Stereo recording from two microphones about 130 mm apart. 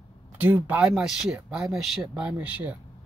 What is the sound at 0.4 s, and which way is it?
Speech, 10° right (ahead or behind).